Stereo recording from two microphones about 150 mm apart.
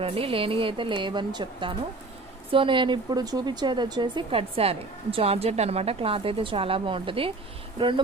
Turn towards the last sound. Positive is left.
turn(degrees=-35)  # may be behind; listen again after turning